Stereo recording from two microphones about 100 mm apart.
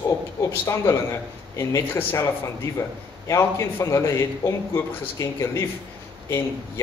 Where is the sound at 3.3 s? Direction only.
30° left (ahead or behind).